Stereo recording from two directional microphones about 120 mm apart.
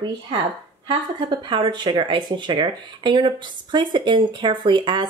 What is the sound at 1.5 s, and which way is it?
Speech, 40° right (ahead or behind).